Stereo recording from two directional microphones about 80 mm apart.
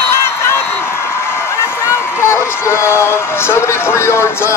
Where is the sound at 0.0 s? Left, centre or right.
Left.